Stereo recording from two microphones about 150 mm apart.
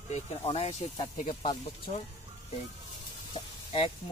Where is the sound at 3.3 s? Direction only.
40° left (ahead or behind).